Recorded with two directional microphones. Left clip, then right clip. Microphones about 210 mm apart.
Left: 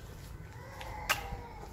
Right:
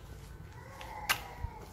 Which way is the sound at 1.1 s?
30° right (ahead or behind).